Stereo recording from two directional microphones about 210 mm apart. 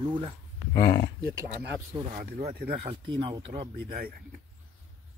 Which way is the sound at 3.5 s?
20° right (ahead or behind).